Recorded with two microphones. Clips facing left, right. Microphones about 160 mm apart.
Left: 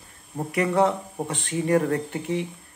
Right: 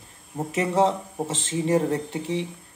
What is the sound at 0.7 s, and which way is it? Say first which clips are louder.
A man's voice: right 1 dB; 20° right (ahead or behind).